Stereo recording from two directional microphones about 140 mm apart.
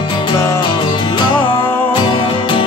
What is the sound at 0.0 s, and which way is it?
Music, 35° left (ahead or behind).